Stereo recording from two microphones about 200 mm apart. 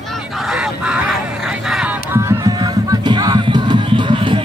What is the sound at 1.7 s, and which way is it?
Music, 10° right (ahead or behind).